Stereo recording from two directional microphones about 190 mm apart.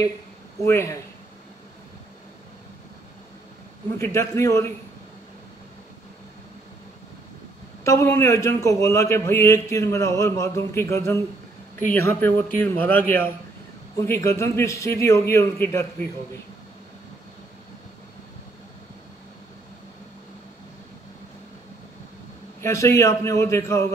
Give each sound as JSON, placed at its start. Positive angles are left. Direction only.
{"t": 0.7, "sound": "a man's voice", "side_deg": 15}
{"t": 4.0, "sound": "a man's voice", "side_deg": 15}
{"t": 7.8, "sound": "a man's voice", "side_deg": 15}
{"t": 22.6, "sound": "a man's voice", "side_deg": 15}